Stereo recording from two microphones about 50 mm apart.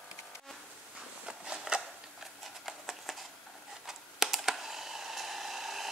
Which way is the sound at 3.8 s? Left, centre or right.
Centre.